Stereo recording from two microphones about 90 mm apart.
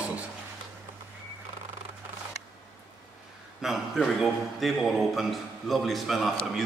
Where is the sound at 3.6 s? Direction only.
Centre (ahead or behind).